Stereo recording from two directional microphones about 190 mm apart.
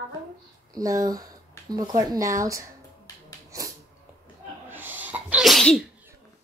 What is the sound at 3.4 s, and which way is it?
Sneeze, 15° right (ahead or behind).